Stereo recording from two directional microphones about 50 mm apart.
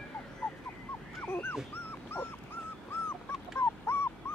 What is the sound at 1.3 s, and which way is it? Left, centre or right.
Dog, left.